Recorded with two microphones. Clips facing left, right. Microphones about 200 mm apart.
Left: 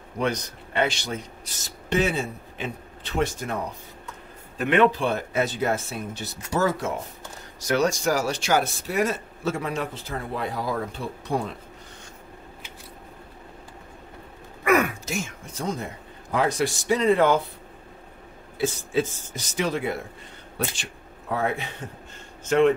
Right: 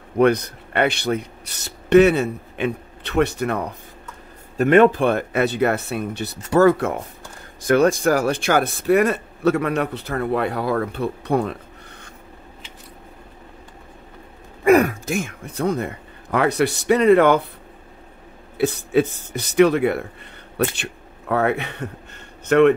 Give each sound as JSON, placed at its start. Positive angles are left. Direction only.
{"t": 0.2, "sound": "a man's voice", "side_deg": -60}
{"t": 4.6, "sound": "a man's voice", "side_deg": -45}
{"t": 14.6, "sound": "gasp", "side_deg": -30}
{"t": 14.9, "sound": "speech", "side_deg": -55}
{"t": 18.6, "sound": "a man's voice", "side_deg": -60}